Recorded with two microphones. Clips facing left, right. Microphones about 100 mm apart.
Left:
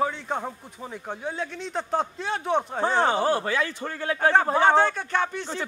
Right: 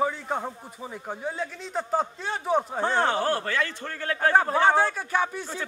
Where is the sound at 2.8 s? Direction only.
10° left (ahead or behind).